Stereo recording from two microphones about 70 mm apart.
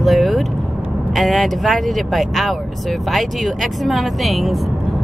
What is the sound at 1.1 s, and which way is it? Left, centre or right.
Speech, centre.